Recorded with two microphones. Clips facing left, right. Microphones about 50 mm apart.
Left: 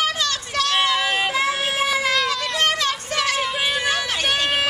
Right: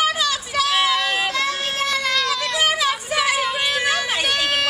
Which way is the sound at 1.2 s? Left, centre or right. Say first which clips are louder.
Left 1 dB; centre.